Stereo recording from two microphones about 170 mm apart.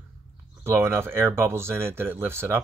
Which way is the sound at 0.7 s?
15° right (ahead or behind).